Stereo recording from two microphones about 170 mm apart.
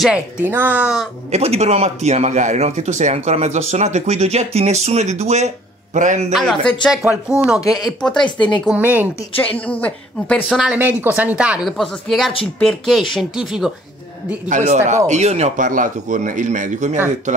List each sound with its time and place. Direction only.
0.0 s speech: 10° right (ahead or behind)
1.3 s a man's voice: 40° right (ahead or behind)
6.3 s speech: 5° left (ahead or behind)
8.2 s speech: 25° left (ahead or behind)
8.6 s speech: 10° right (ahead or behind)
9.4 s a woman's voice: 10° left (ahead or behind)
10.6 s speech: 10° right (ahead or behind)
14.5 s a man's voice: 45° right (ahead or behind)